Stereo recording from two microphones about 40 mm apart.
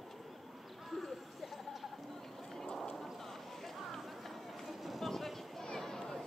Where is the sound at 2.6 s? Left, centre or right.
Centre.